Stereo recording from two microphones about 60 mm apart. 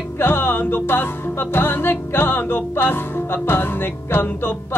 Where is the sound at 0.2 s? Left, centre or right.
Left.